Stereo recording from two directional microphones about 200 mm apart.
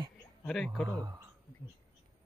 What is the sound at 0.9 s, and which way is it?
Speech, 15° right (ahead or behind).